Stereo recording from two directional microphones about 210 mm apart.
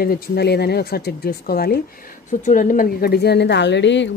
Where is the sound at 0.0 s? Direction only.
45° left (ahead or behind).